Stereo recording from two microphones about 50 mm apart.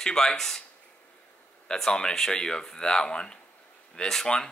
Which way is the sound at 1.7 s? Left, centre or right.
Centre.